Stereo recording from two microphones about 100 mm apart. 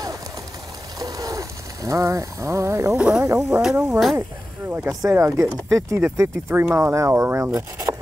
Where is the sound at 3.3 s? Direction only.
30° right (ahead or behind).